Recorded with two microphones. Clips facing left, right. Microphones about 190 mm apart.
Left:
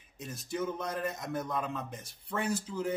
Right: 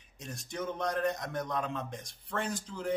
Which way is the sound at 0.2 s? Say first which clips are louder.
Left 3 dB; 5° left (ahead or behind).